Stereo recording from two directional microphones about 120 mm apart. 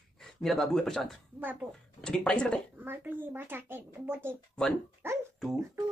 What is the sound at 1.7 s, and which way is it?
Speech, 5° left (ahead or behind).